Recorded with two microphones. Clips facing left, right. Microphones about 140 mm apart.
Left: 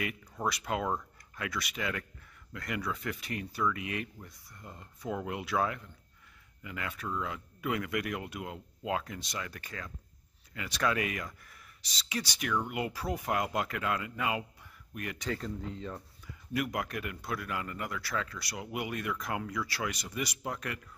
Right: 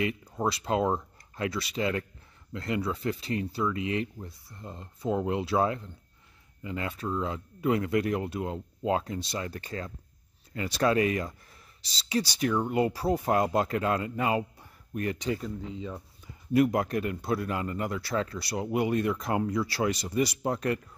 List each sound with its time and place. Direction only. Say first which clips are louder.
0.0 s speech: right 6 dB; 30° right (ahead or behind)
15.2 s speech: right 4 dB; 10° right (ahead or behind)
16.3 s speech: right 11 dB; 30° right (ahead or behind)